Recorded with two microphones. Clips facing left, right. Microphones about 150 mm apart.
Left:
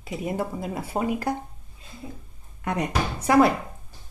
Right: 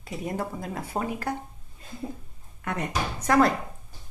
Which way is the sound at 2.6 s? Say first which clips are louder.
Left 4 dB; 20° left (ahead or behind).